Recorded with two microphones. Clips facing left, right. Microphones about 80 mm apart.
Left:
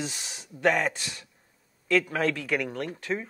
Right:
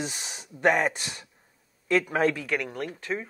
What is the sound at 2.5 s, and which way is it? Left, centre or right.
Speech, centre.